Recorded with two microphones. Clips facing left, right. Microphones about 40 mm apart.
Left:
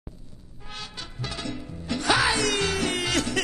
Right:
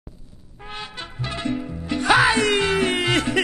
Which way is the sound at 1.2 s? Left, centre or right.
Right.